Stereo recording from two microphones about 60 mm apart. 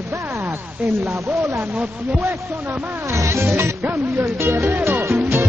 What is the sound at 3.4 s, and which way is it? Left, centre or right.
Music, right.